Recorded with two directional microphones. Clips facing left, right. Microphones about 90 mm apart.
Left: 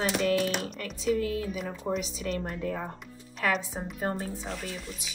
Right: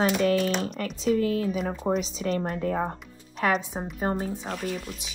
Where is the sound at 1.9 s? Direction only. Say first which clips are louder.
Right 5 dB; 35° right (ahead or behind).